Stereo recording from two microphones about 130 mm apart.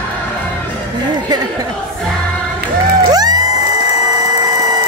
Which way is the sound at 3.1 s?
30° right (ahead or behind).